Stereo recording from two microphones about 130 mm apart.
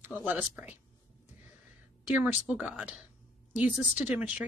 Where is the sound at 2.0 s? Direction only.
10° right (ahead or behind).